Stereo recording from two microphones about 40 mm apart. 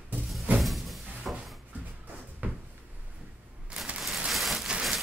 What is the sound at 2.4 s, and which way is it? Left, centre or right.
Cupboard open or close, right.